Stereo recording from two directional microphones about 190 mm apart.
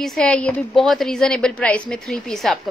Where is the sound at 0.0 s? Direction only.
5° left (ahead or behind).